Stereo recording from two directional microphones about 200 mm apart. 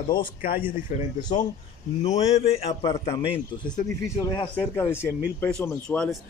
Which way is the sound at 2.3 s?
30° left (ahead or behind).